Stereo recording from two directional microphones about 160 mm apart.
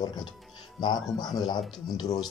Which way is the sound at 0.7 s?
25° left (ahead or behind).